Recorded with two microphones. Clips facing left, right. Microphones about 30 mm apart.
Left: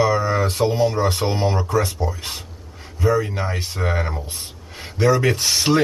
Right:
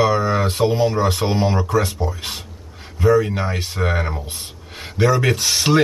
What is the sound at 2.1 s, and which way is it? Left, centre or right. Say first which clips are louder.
Speech: right 2 dB; right.